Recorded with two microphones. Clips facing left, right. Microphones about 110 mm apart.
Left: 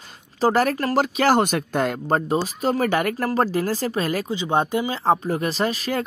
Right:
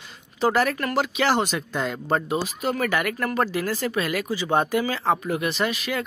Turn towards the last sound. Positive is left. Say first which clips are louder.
# left 2 dB
turn(degrees=40)  # may be behind; listen again after turning